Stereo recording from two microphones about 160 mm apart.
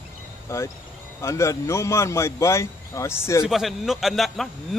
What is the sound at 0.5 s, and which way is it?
A man's voice, 15° left (ahead or behind).